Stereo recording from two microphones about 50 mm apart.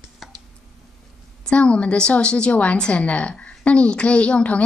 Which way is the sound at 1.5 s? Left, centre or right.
Left.